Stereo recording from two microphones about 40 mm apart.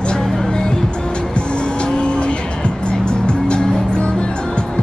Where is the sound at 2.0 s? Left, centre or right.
Left.